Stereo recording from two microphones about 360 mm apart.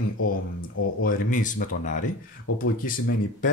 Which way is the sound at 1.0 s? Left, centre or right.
Left.